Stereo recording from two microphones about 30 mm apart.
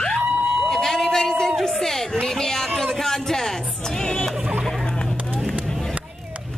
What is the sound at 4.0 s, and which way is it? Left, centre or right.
Music, centre.